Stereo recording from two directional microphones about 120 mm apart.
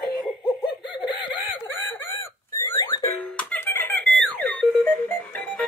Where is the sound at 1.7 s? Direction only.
20° left (ahead or behind).